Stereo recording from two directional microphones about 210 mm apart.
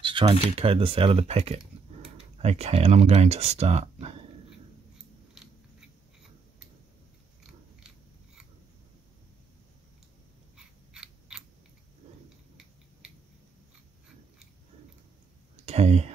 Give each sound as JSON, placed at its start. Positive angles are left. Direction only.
{"t": 0.0, "sound": "speech", "side_deg": -25}
{"t": 5.3, "sound": "biting", "side_deg": -5}
{"t": 10.9, "sound": "scissors", "side_deg": -5}
{"t": 15.5, "sound": "a sound", "side_deg": -30}